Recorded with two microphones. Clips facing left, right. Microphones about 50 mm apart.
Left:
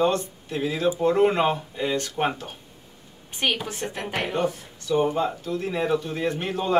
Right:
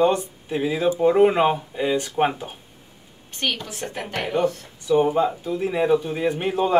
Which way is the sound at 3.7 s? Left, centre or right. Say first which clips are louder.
Even; centre.